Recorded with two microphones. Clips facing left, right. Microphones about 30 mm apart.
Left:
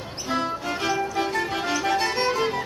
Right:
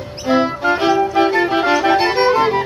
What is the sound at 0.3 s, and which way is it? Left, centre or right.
Music, right.